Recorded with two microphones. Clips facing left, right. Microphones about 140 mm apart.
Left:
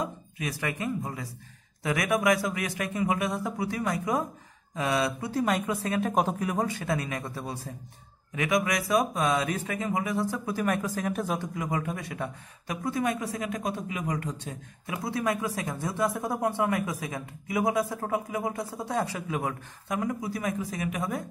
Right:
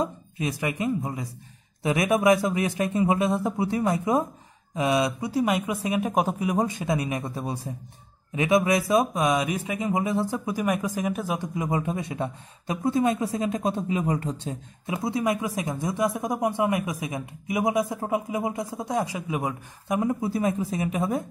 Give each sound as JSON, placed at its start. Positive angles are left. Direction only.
{"t": 0.0, "sound": "speech", "side_deg": -25}
{"t": 10.5, "sound": "speech", "side_deg": -15}
{"t": 11.5, "sound": "speech", "side_deg": -20}